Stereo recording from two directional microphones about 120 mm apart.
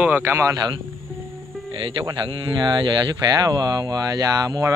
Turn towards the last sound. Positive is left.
turn(degrees=-30)  # may be behind; listen again after turning